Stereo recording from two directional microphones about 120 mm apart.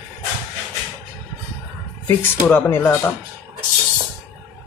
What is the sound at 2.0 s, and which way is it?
Speech, 15° left (ahead or behind).